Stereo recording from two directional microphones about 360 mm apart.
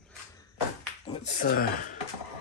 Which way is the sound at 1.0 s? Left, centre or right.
Left.